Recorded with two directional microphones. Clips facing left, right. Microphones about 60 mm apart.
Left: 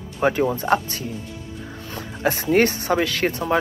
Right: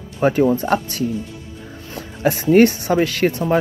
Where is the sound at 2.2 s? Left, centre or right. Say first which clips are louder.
Right 5 dB; left.